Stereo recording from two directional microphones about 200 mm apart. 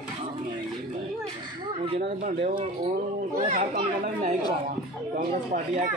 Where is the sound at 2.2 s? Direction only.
30° right (ahead or behind).